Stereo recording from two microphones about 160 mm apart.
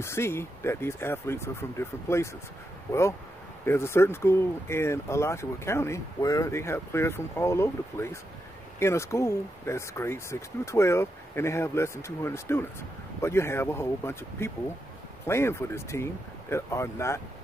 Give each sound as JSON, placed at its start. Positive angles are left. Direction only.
{"t": 0.0, "sound": "speech", "side_deg": 15}